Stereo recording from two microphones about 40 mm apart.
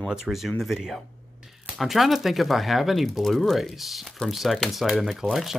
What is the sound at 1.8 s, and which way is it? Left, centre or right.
Speech, centre.